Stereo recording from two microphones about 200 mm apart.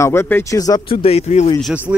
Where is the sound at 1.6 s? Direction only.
5° right (ahead or behind).